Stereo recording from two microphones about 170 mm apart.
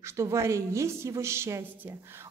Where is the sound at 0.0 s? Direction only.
15° right (ahead or behind).